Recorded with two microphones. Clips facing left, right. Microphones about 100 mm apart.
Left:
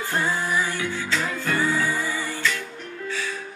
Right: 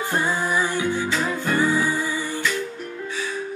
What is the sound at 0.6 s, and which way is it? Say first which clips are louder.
Music: right 4 dB; 15° right (ahead or behind).